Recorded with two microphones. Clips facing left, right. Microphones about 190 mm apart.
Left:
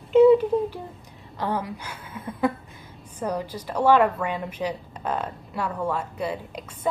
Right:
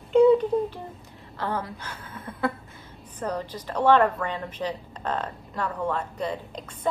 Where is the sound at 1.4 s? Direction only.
15° left (ahead or behind).